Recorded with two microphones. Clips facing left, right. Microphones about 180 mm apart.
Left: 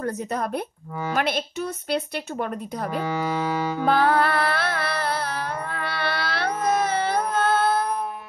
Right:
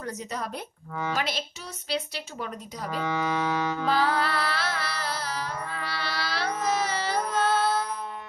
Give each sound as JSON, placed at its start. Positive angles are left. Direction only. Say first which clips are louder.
{"t": 0.0, "sound": "a woman's voice", "louder": "left 7 dB", "side_deg": 55}
{"t": 3.0, "sound": "speech", "louder": "left 1 dB", "side_deg": 10}
{"t": 3.8, "sound": "music", "louder": "left 7 dB", "side_deg": 55}